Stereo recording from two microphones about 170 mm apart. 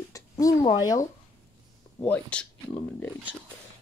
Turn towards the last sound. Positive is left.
turn(degrees=5)  # may be behind; listen again after turning